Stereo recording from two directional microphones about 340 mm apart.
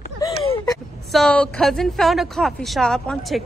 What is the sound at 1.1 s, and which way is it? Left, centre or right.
A woman's voice, centre.